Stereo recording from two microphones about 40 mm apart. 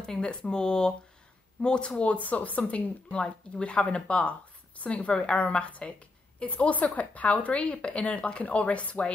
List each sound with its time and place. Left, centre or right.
0.0 s a woman's voice: left
4.1 s a woman's voice: left